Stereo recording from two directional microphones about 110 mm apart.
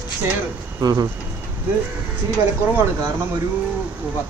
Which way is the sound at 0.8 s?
35° right (ahead or behind).